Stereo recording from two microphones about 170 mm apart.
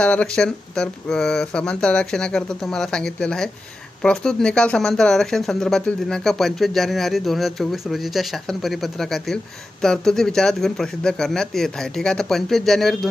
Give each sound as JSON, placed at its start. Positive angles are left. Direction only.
{"t": 0.0, "sound": "speech", "side_deg": 5}